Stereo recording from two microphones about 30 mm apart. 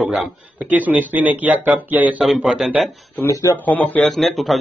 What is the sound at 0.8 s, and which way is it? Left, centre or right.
Speech, right.